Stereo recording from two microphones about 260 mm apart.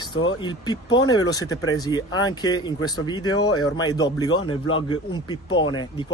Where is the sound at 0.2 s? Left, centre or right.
Centre.